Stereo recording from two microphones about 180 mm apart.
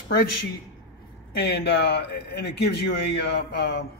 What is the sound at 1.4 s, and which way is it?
Speech, 70° left (ahead or behind).